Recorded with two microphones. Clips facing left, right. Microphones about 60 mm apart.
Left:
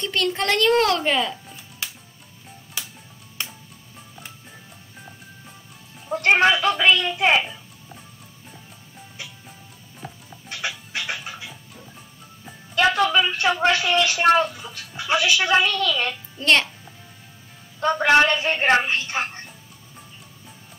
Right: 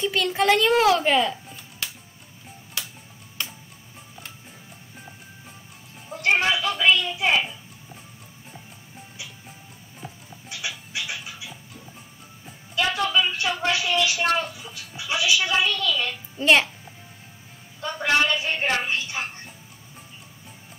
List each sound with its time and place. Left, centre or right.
0.0 s a woman's voice: centre
4.1 s music: centre
6.0 s speech: left
10.5 s music: left
12.7 s speech: left
16.3 s music: centre
17.7 s speech: left